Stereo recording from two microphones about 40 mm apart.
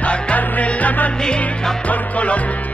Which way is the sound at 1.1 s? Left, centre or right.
Centre.